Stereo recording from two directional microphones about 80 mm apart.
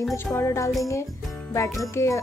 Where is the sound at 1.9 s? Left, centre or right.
Left.